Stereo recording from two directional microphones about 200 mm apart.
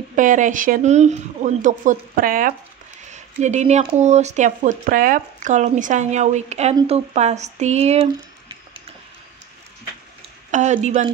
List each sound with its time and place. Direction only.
0.1 s speech: 40° right (ahead or behind)
10.5 s speech: 35° right (ahead or behind)